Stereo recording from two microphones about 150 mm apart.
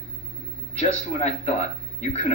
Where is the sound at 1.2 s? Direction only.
45° left (ahead or behind).